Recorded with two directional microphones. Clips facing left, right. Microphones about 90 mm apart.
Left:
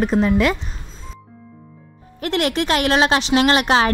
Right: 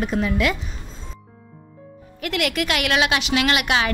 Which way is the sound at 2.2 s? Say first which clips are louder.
Left 4 dB; 35° left (ahead or behind).